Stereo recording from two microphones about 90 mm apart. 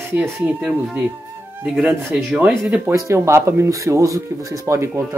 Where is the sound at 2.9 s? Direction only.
30° right (ahead or behind).